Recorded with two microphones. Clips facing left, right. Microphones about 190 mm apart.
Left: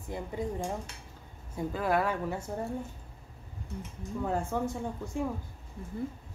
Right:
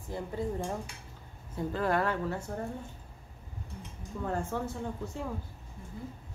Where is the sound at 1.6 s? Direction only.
10° left (ahead or behind).